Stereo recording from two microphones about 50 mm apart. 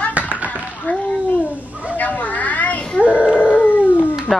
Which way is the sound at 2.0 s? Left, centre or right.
Left.